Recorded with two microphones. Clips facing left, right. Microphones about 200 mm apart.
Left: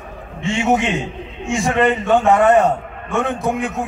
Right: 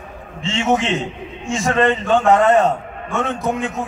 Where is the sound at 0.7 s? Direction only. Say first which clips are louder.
Even; 15° left (ahead or behind).